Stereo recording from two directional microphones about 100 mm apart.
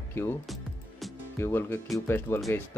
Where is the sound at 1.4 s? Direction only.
25° left (ahead or behind).